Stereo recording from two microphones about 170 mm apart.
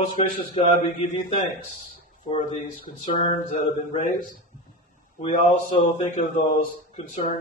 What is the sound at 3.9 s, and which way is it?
Speech, 45° left (ahead or behind).